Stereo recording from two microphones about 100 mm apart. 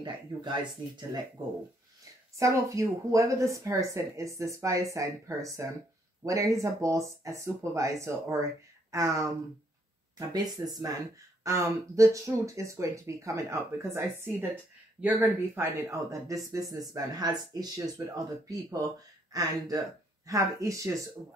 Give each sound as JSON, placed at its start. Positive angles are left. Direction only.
{"t": 0.0, "sound": "speech", "side_deg": -50}
{"t": 2.3, "sound": "speech", "side_deg": -30}
{"t": 16.1, "sound": "speech", "side_deg": -35}
{"t": 19.3, "sound": "speech", "side_deg": -40}